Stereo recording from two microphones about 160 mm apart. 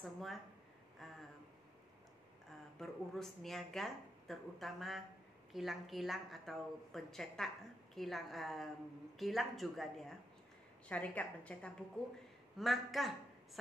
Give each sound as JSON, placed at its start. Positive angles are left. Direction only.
{"t": 0.0, "sound": "speech", "side_deg": 0}
{"t": 2.8, "sound": "a woman's voice", "side_deg": 0}